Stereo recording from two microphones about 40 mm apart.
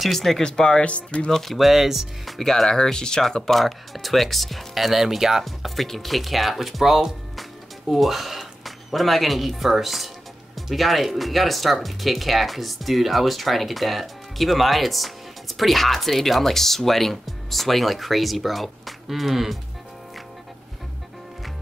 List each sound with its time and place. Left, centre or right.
0.0 s speech: centre
0.4 s speech: centre
1.3 s speech: centre
5.4 s speech: centre